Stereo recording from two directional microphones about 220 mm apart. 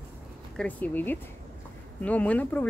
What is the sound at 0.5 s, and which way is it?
Speech, 5° left (ahead or behind).